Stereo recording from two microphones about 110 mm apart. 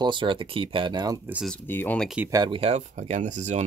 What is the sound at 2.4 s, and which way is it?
Speech, 55° right (ahead or behind).